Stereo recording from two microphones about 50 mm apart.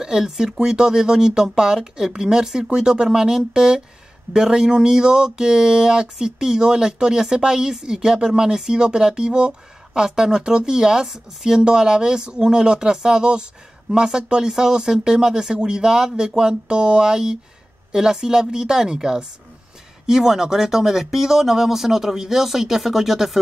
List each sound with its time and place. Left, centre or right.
0.0 s speech: centre